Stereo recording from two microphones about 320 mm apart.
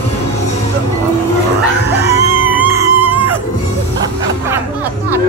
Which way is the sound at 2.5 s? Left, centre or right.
Centre.